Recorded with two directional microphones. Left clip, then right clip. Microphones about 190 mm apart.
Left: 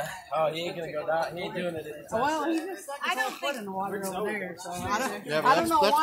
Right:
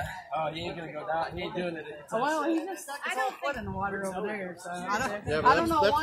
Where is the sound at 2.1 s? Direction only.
15° right (ahead or behind).